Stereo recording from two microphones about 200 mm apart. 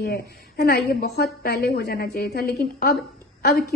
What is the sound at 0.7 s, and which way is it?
A woman's voice, 50° left (ahead or behind).